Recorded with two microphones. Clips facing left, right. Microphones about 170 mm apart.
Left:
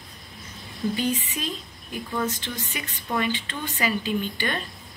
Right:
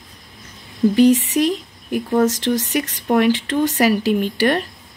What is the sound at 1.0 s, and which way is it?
Speech, 80° right.